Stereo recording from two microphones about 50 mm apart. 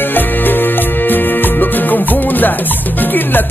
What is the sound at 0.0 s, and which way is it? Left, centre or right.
Music, left.